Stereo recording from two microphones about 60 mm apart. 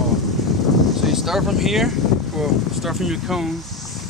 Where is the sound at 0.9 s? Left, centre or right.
Centre.